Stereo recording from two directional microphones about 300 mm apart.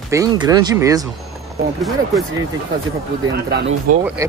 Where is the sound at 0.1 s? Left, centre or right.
Centre.